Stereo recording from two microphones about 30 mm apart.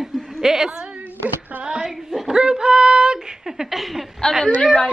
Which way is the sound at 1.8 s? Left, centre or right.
Centre.